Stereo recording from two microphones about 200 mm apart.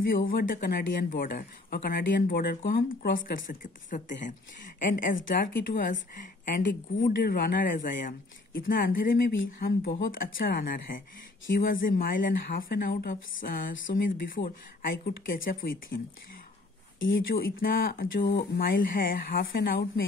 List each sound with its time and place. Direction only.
0.1 s speech: 45° left (ahead or behind)
17.3 s speech: 45° left (ahead or behind)